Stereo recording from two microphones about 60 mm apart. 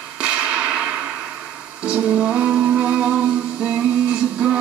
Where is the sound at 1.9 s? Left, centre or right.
Centre.